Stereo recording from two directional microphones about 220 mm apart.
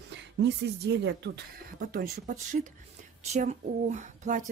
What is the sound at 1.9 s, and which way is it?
Speech, 35° right (ahead or behind).